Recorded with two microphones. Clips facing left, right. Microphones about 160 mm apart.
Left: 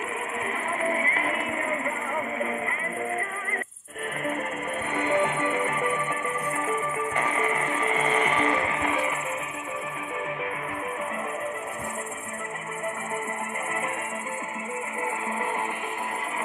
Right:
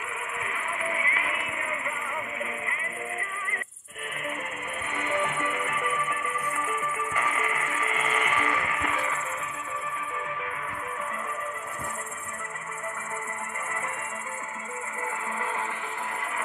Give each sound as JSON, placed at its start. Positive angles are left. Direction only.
{"t": 0.7, "sound": "music", "side_deg": 40}
{"t": 4.9, "sound": "music", "side_deg": 30}